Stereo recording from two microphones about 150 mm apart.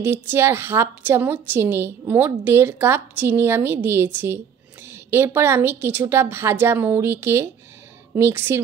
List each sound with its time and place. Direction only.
0.0 s a woman's voice: 15° right (ahead or behind)